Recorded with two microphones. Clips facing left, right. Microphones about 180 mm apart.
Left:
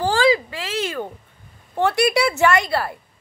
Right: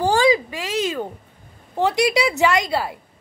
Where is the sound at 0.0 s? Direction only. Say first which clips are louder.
Right 1 dB; 15° right (ahead or behind).